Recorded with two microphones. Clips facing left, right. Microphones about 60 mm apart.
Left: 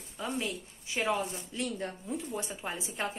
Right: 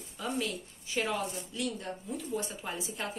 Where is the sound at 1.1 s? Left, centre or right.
Left.